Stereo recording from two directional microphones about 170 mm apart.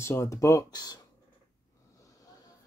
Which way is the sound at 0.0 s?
15° left (ahead or behind).